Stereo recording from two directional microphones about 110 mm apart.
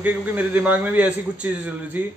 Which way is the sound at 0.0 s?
15° right (ahead or behind).